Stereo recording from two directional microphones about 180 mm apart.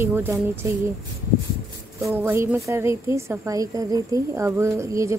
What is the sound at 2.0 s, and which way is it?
A woman's voice, 15° right (ahead or behind).